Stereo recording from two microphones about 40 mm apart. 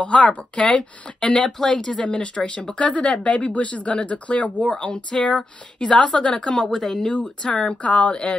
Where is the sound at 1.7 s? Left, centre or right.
Left.